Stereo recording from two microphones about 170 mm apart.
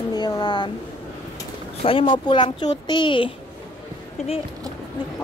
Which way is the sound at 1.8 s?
30° left (ahead or behind).